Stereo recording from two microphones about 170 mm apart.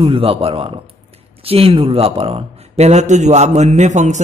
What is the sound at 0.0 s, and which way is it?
Speech, 35° right (ahead or behind).